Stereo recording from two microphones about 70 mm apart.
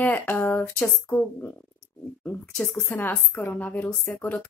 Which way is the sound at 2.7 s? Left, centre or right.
Left.